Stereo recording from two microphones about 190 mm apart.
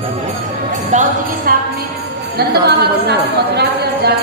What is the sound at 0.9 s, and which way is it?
Jingle bell, 40° right (ahead or behind).